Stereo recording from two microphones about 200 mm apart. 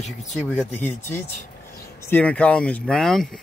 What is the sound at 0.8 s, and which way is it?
Speech, 10° left (ahead or behind).